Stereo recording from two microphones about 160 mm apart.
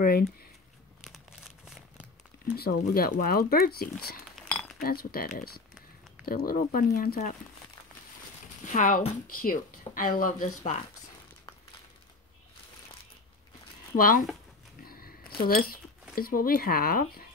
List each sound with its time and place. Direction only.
0.0 s speech: 70° left (ahead or behind)
1.0 s crumpling: centre (ahead or behind)
2.5 s speech: 75° left (ahead or behind)
4.4 s cutlery: 5° left (ahead or behind)
4.7 s speech: 70° left (ahead or behind)
8.6 s speech: 55° left (ahead or behind)
13.9 s speech: 60° left (ahead or behind)
14.8 s a sound: 70° left (ahead or behind)
16.2 s speech: 65° left (ahead or behind)